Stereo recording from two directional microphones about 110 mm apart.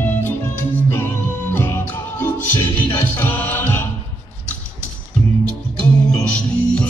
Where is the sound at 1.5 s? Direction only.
20° left (ahead or behind).